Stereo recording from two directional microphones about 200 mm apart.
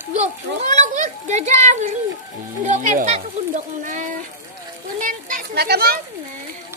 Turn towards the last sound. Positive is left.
turn(degrees=-50)  # may be behind; listen again after turning